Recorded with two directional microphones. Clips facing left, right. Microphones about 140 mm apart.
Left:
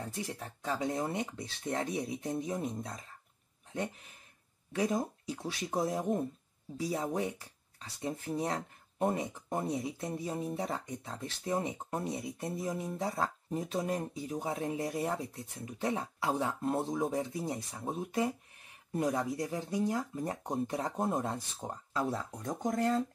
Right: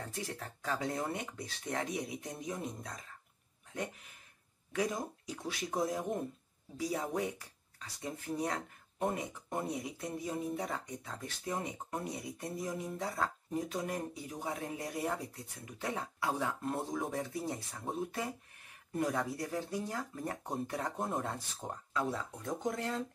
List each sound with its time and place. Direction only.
0.0 s speech: 20° left (ahead or behind)
4.7 s speech: 30° left (ahead or behind)
18.9 s speech: 20° left (ahead or behind)
21.6 s speech: 5° left (ahead or behind)
21.9 s speech: 40° left (ahead or behind)